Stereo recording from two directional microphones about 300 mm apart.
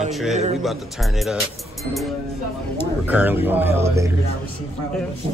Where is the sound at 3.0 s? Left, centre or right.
Centre.